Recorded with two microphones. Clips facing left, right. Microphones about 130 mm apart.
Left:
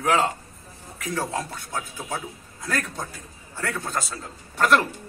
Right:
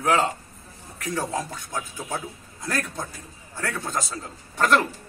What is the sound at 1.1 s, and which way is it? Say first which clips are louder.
A man's voice: even; 15° right (ahead or behind).